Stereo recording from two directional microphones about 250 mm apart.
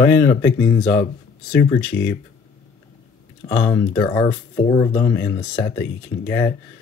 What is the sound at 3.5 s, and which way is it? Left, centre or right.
Speech, centre.